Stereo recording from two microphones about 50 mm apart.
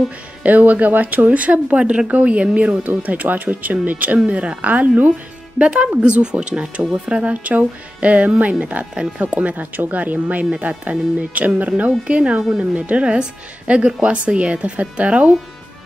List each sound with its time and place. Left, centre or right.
0.4 s speech: right; by 12.6 s centre
12.7 s speech: right